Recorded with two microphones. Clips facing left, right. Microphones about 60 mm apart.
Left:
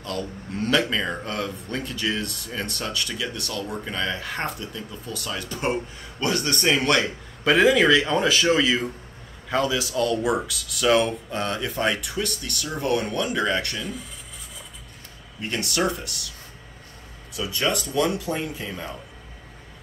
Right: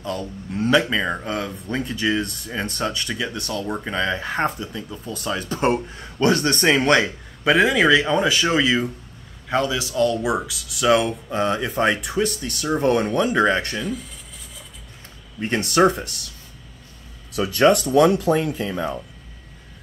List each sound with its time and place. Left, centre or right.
0.0 s speech: centre
5.4 s speech: right
7.4 s speech: centre
7.9 s speech: centre
8.2 s speech: centre
11.4 s speech: centre
15.4 s speech: right
17.3 s speech: right